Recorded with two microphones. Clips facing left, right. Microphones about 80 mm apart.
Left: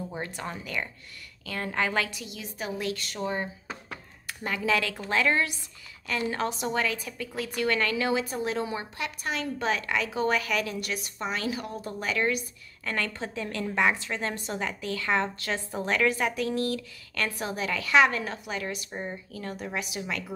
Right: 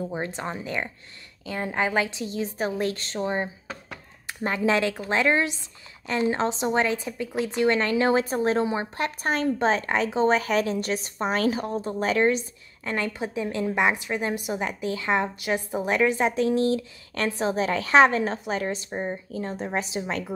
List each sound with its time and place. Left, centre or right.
0.1 s a woman's voice: right
8.9 s a woman's voice: right